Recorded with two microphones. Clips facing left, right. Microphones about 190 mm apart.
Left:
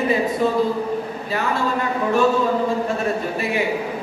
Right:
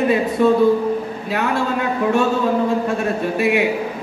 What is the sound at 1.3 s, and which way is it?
Speech, 70° right (ahead or behind).